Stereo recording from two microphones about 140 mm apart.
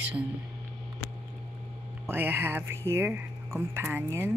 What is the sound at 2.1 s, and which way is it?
Speech, 15° right (ahead or behind).